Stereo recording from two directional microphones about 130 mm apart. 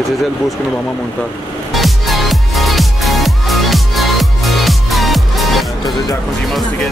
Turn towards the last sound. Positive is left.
turn(degrees=0)  # may be behind; listen again after turning